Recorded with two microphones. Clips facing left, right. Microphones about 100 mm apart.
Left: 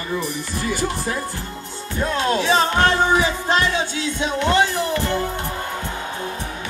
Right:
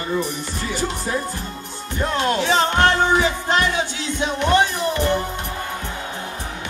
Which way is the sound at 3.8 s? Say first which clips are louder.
Left 1 dB; 20° right (ahead or behind).